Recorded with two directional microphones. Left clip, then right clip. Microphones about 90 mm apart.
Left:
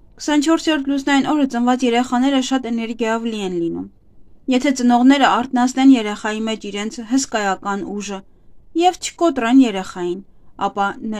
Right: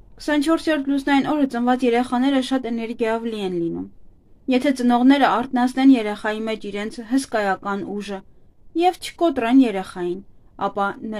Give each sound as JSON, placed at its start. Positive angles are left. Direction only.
{"t": 0.2, "sound": "speech", "side_deg": 40}